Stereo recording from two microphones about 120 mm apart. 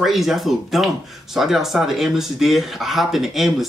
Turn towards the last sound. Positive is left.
turn(degrees=0)  # may be behind; listen again after turning